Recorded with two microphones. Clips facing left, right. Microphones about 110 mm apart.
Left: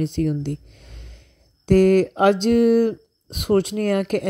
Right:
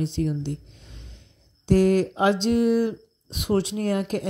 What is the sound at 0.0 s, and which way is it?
Speech, 50° left (ahead or behind).